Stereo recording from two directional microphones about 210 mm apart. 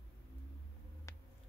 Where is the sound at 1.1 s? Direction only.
15° left (ahead or behind).